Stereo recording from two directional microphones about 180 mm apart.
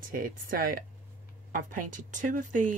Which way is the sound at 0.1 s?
50° right (ahead or behind).